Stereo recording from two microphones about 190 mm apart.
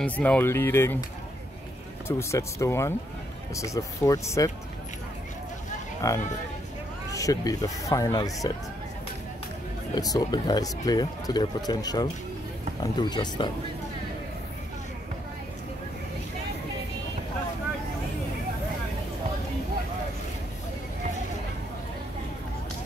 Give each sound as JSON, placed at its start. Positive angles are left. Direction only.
{"t": 0.0, "sound": "speech", "side_deg": 5}
{"t": 2.0, "sound": "speech", "side_deg": 15}
{"t": 6.0, "sound": "speech", "side_deg": 15}
{"t": 9.9, "sound": "speech", "side_deg": 20}